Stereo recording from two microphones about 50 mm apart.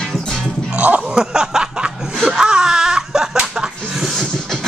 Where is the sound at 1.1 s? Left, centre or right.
Centre.